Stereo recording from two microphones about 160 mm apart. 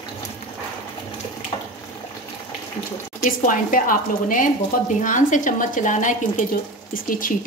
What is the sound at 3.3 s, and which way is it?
A woman's voice, 60° left (ahead or behind).